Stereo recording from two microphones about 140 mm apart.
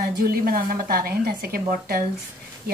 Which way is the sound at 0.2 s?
90° right.